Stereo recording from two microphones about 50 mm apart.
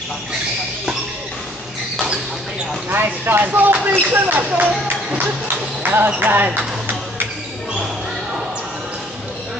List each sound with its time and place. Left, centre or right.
2.9 s speech: right
5.8 s basketball bounce: right
6.1 s speech: right